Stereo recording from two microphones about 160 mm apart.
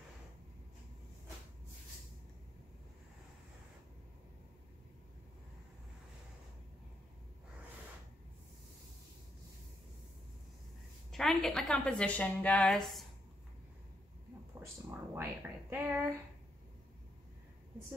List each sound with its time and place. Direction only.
11.1 s a woman's voice: 5° left (ahead or behind)
14.6 s a sound: 15° right (ahead or behind)
15.7 s speech: 10° right (ahead or behind)